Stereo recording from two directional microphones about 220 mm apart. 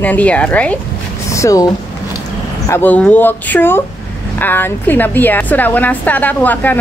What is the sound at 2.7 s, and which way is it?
A woman's voice, 10° left (ahead or behind).